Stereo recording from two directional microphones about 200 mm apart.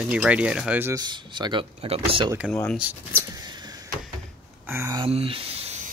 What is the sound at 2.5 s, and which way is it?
Speech, 5° left (ahead or behind).